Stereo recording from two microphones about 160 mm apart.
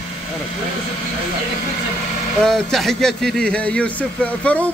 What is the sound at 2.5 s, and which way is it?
Speech, centre (ahead or behind).